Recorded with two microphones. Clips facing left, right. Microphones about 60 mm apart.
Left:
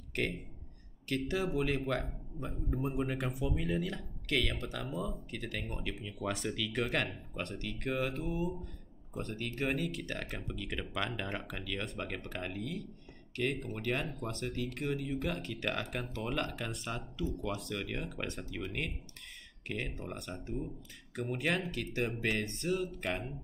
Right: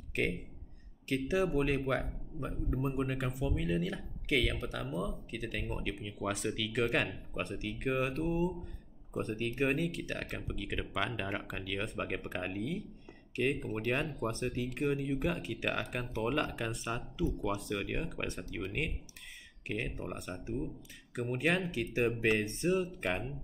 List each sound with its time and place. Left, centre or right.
0.1 s a man's voice: centre
14.9 s a man's voice: centre